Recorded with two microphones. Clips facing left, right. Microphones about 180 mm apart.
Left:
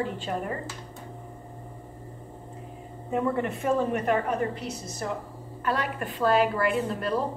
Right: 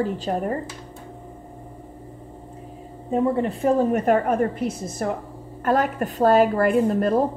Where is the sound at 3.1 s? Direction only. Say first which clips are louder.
Right 5 dB; 30° right (ahead or behind).